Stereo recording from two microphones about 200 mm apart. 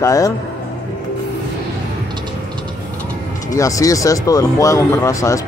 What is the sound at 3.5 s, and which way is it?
Speech, 15° left (ahead or behind).